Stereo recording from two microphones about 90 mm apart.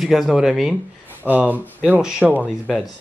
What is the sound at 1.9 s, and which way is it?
Speech, 5° right (ahead or behind).